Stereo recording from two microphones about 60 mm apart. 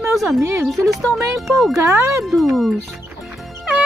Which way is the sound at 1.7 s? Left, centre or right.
Right.